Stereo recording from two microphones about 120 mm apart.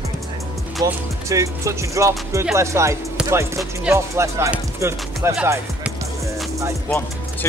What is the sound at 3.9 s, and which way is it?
Speech, 25° right (ahead or behind).